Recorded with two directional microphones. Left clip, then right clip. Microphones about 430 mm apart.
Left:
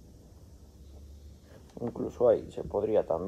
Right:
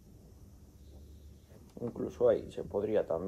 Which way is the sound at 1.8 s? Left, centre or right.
Centre.